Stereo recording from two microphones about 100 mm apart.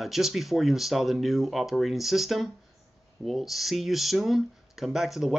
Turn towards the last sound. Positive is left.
turn(degrees=0)  # may be behind; listen again after turning